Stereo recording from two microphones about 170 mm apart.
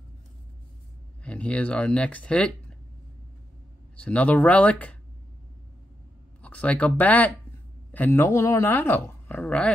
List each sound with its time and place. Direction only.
1.2 s speech: 5° left (ahead or behind)
3.9 s speech: 5° left (ahead or behind)
6.4 s speech: 10° left (ahead or behind)